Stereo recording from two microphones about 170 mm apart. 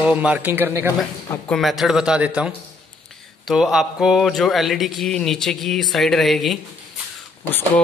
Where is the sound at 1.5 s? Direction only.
Centre (ahead or behind).